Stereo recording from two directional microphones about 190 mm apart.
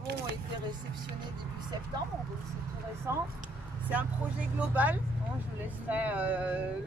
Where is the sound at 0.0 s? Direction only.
60° right (ahead or behind).